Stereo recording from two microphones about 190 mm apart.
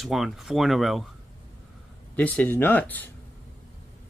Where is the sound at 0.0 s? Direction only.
Centre (ahead or behind).